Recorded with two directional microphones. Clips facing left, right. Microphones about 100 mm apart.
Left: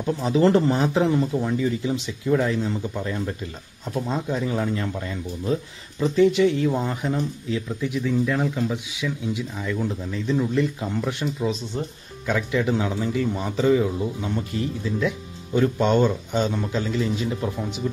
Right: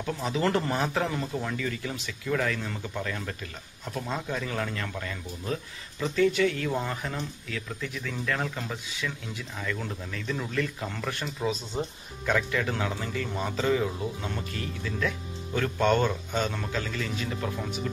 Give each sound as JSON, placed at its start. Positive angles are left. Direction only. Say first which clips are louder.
{"t": 0.0, "sound": "speech", "louder": "left 8 dB", "side_deg": 25}
{"t": 11.7, "sound": "speech", "louder": "left 2 dB", "side_deg": -15}
{"t": 12.3, "sound": "speech", "louder": "left 4 dB", "side_deg": 10}